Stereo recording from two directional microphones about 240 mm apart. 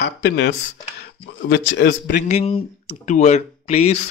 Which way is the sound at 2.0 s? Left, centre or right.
Left.